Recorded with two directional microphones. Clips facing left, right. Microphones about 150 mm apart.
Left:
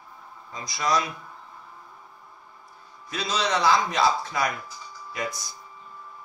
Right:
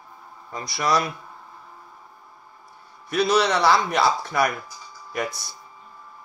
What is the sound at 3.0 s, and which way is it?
Speech, 65° right (ahead or behind).